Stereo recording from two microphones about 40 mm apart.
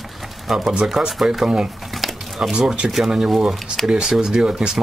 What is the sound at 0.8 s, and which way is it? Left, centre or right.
Speech, centre.